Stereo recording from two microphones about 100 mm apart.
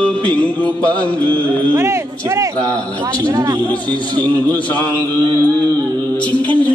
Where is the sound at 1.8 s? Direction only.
35° right (ahead or behind).